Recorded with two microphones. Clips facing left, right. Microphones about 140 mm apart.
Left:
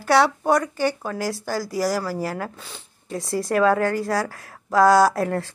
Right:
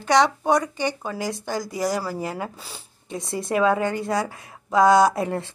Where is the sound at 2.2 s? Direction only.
15° right (ahead or behind).